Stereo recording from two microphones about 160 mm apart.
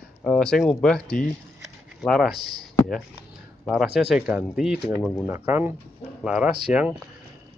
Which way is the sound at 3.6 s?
Centre (ahead or behind).